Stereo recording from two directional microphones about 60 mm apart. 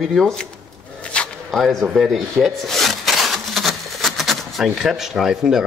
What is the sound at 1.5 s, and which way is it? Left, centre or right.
Speech, centre.